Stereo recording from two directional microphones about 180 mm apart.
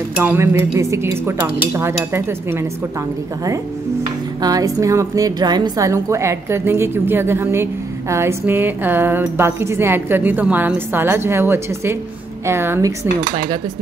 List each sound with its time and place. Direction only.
0.2 s speech: 15° right (ahead or behind)
4.4 s speech: 20° right (ahead or behind)